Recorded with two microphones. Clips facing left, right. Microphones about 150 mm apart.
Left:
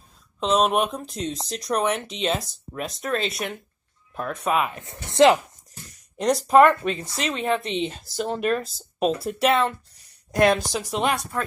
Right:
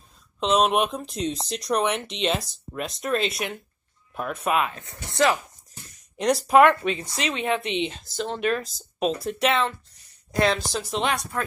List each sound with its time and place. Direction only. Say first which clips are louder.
0.4 s speech: even; centre (ahead or behind)
4.7 s speech: left 6 dB; 20° left (ahead or behind)
6.1 s speech: left 1 dB; centre (ahead or behind)
10.3 s speech: left 3 dB; 15° left (ahead or behind)